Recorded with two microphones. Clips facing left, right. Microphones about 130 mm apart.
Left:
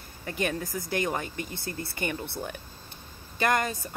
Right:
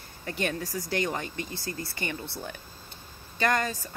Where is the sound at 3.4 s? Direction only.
15° left (ahead or behind).